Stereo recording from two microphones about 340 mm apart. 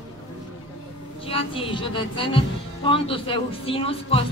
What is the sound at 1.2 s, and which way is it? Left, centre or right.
A woman's voice, centre.